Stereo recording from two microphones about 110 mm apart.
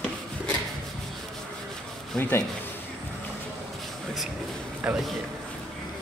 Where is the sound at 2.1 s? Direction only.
15° left (ahead or behind).